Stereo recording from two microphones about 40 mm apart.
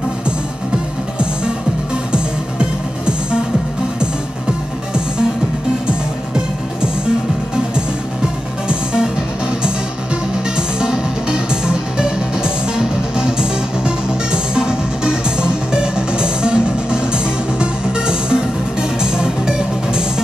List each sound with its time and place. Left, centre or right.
3.1 s music: right
5.9 s music: right
10.8 s music: right